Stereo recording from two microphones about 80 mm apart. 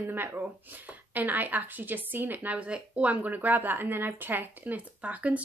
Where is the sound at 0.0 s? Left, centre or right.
Right.